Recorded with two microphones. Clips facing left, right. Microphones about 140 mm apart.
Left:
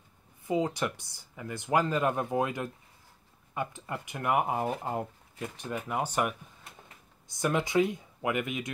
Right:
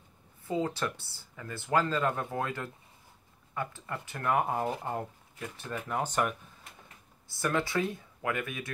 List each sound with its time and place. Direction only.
0.5 s speech: 15° left (ahead or behind)